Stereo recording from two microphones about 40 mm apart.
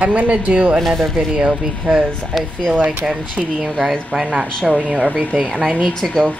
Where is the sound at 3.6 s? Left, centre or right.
Centre.